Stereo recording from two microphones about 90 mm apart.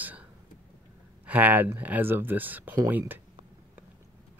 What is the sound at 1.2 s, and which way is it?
Speech, 15° right (ahead or behind).